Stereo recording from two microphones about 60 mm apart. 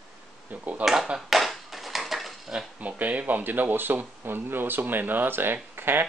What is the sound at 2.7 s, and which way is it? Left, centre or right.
Speech, right.